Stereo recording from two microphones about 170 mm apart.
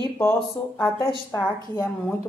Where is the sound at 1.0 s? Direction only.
20° left (ahead or behind).